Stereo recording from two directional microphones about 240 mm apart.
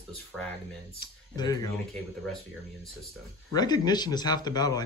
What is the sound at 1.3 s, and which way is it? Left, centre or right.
Speech, centre.